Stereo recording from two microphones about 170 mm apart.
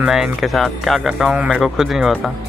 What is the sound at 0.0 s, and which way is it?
Speech, centre (ahead or behind).